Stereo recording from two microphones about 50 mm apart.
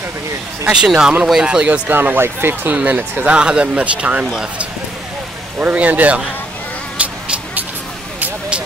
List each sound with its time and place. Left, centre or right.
0.8 s speech: centre
1.7 s speech: right
2.7 s speech: right
4.3 s speech: centre
5.6 s speech: right
7.0 s a sound: right